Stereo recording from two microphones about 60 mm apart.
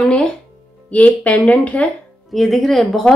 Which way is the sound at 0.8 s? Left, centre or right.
Left.